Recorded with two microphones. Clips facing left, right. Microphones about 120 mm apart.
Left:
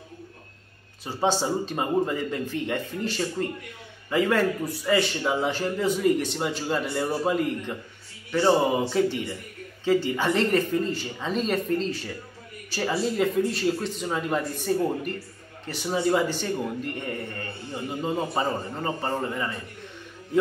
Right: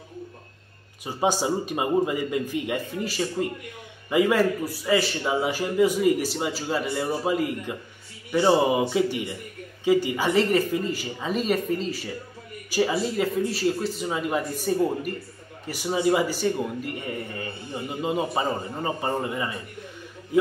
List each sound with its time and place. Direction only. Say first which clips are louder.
1.0 s a man's voice: right 1 dB; 10° right (ahead or behind)
12.9 s a man's voice: left 1 dB; centre (ahead or behind)